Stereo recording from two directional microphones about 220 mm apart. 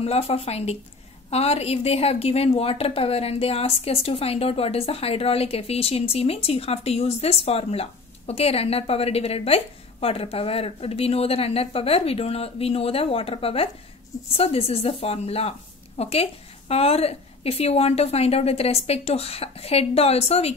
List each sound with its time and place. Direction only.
0.0 s a woman's voice: 30° left (ahead or behind)